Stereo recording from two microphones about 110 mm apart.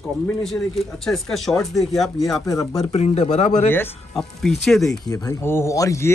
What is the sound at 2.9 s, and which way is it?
Speech, 80° left.